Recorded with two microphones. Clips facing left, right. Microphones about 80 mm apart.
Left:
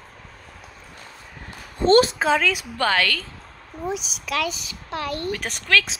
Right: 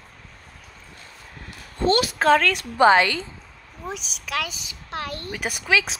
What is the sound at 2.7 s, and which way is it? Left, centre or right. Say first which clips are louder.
Speech: right 8 dB; right.